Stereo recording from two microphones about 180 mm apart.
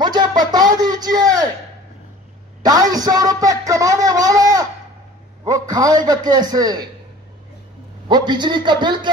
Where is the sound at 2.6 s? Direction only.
20° right (ahead or behind).